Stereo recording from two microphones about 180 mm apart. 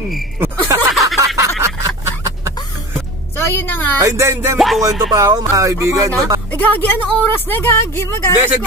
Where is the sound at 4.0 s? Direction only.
15° right (ahead or behind).